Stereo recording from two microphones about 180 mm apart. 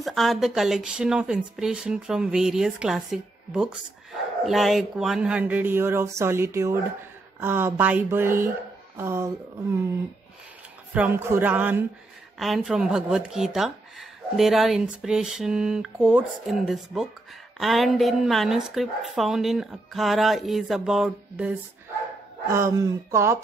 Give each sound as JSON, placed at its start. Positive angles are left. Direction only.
{"t": 0.0, "sound": "speech", "side_deg": 0}
{"t": 10.9, "sound": "speech", "side_deg": -10}
{"t": 22.5, "sound": "speech", "side_deg": -15}